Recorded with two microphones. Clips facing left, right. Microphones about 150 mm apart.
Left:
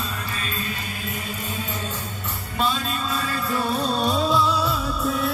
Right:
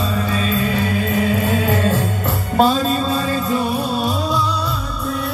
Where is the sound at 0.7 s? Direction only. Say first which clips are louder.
Right 13 dB; 90° right.